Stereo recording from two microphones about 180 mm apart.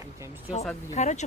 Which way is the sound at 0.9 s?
40° left (ahead or behind).